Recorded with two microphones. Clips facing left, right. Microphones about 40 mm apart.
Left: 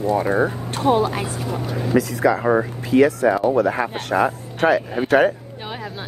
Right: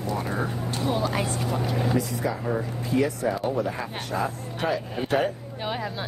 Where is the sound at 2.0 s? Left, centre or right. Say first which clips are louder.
Left 9 dB; left.